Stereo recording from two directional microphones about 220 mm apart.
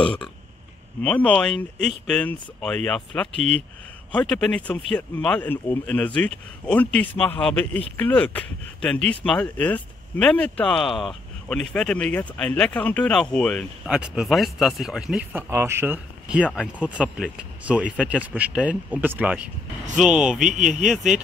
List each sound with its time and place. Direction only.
0.0 s speech: 5° left (ahead or behind)
3.3 s speech: 30° right (ahead or behind)
4.1 s speech: 5° left (ahead or behind)
16.4 s speech: 5° left (ahead or behind)
16.8 s speech: 5° right (ahead or behind)